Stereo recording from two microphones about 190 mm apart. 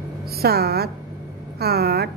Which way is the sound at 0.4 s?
55° right (ahead or behind).